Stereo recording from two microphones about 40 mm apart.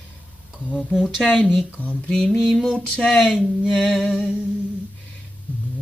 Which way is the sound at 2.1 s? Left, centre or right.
Centre.